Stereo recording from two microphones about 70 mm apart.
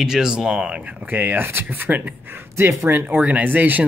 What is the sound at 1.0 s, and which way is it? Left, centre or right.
Speech, right.